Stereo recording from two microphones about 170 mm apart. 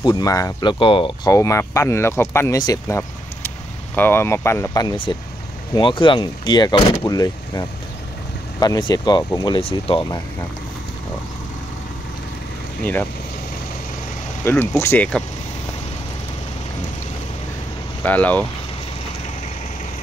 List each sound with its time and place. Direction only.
0.0 s speech: 25° left (ahead or behind)
1.3 s speech: 20° left (ahead or behind); by 10.0 s 35° left (ahead or behind)
14.4 s speech: 15° left (ahead or behind)
18.0 s speech: 10° left (ahead or behind)